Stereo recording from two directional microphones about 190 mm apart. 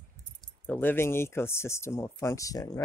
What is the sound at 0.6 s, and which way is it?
Speech, 10° left (ahead or behind).